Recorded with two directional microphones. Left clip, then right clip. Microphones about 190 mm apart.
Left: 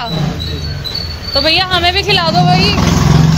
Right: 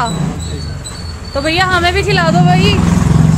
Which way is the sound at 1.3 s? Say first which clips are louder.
Left 1 dB; 15° right (ahead or behind).